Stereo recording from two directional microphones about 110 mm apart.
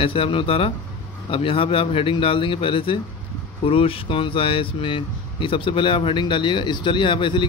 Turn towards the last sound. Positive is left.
turn(degrees=45)  # may be behind; listen again after turning